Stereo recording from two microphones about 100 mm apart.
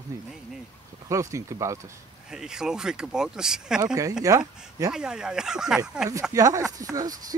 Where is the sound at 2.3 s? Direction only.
5° right (ahead or behind).